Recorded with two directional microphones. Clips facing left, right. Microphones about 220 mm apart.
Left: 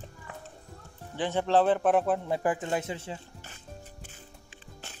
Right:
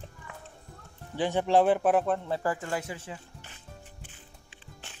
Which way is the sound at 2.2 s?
15° left (ahead or behind).